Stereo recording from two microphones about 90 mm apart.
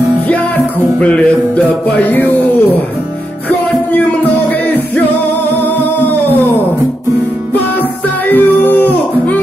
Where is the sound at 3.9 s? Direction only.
20° left (ahead or behind).